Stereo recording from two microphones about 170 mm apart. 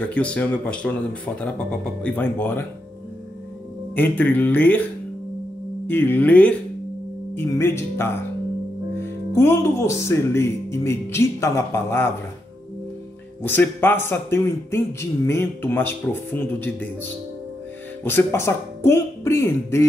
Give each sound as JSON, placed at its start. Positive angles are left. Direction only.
{"t": 0.0, "sound": "speech", "side_deg": 5}
{"t": 3.9, "sound": "speech", "side_deg": 10}
{"t": 5.9, "sound": "speech", "side_deg": 10}
{"t": 9.3, "sound": "speech", "side_deg": 15}
{"t": 13.4, "sound": "speech", "side_deg": 10}